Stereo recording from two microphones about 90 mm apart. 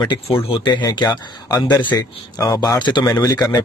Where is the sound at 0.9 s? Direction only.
50° left (ahead or behind).